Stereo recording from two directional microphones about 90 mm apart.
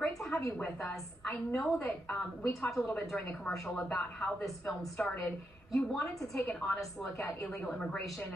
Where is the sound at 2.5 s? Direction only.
5° left (ahead or behind).